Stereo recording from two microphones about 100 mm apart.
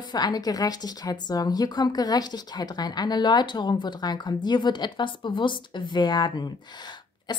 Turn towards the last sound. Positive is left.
turn(degrees=45)  # may be behind; listen again after turning